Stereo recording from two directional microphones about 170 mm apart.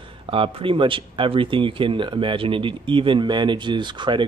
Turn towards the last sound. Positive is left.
turn(degrees=-25)  # may be behind; listen again after turning